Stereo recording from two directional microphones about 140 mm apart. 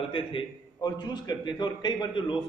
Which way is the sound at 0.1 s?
40° left (ahead or behind).